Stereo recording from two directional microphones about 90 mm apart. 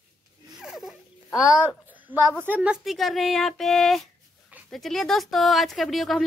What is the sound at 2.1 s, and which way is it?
Speech, 20° right (ahead or behind).